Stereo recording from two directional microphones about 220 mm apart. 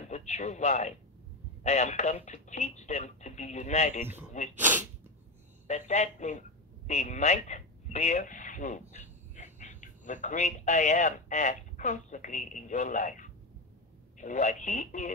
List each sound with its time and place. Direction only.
0.1 s a man's voice: 30° left (ahead or behind)
4.0 s a man's voice: 10° right (ahead or behind)
5.7 s a man's voice: 30° left (ahead or behind)